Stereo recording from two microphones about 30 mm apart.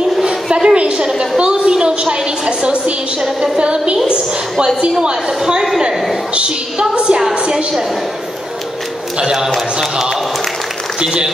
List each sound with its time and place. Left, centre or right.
0.2 s a sound: right
0.7 s a woman's voice: right
6.3 s a woman's voice: right
9.2 s a woman's voice: centre